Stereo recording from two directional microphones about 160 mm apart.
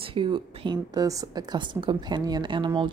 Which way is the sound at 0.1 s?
30° right (ahead or behind).